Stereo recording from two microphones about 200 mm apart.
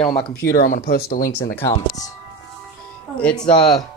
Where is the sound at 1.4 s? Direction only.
10° left (ahead or behind).